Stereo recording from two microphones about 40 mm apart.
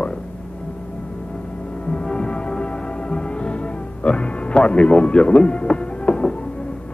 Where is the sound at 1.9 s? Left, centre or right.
Left.